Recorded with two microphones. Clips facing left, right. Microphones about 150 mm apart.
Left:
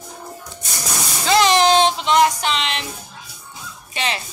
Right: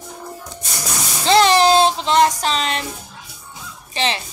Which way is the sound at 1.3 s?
30° right (ahead or behind).